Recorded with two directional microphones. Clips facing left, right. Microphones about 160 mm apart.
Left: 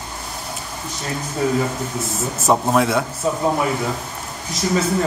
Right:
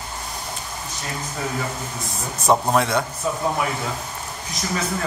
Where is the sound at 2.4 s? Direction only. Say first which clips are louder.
Left 2 dB; 5° left (ahead or behind).